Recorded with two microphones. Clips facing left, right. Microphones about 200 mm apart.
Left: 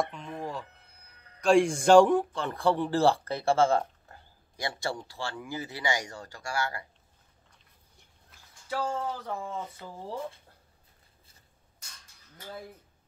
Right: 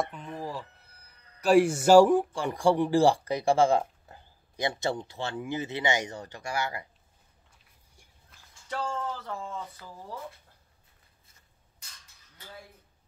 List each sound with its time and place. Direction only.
0.0 s speech: centre (ahead or behind); by 6.8 s 20° right (ahead or behind)
8.3 s speech: 5° left (ahead or behind); by 10.2 s 25° left (ahead or behind)